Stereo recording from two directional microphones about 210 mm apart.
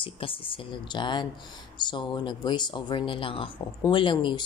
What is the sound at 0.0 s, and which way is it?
Speech, 25° left (ahead or behind).